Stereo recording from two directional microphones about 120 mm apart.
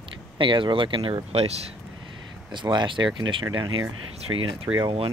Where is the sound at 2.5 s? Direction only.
40° right (ahead or behind).